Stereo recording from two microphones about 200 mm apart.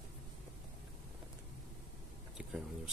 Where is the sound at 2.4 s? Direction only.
5° right (ahead or behind).